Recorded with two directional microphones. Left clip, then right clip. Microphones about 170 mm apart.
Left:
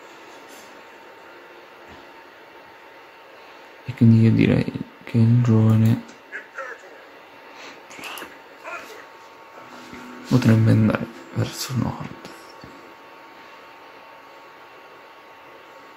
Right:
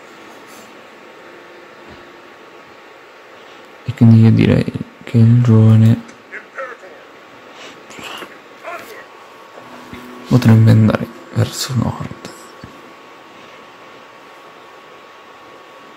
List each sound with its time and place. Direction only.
3.8 s speech: 10° right (ahead or behind)
7.9 s a sound: 10° right (ahead or behind)
10.3 s speech: 15° right (ahead or behind)